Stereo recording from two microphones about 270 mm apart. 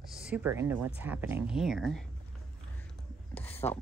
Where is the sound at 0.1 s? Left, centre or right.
Centre.